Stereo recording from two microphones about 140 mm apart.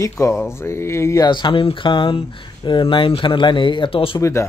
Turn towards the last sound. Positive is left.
turn(degrees=20)  # may be behind; listen again after turning